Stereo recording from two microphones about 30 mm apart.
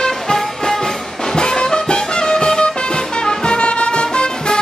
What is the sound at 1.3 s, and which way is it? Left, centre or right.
Music, left.